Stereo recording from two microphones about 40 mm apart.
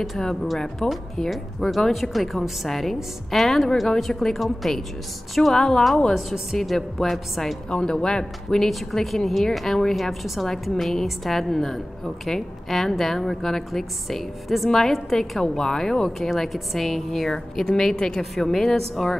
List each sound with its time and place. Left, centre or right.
0.7 s a woman's voice: centre
6.1 s a woman's voice: centre
7.7 s a woman's voice: centre
8.6 s a woman's voice: centre
10.2 s a woman's voice: centre
15.4 s a woman's voice: centre
16.2 s a woman's voice: centre